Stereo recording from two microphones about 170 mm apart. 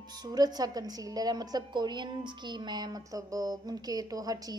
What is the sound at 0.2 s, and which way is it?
A woman's voice, 25° right (ahead or behind).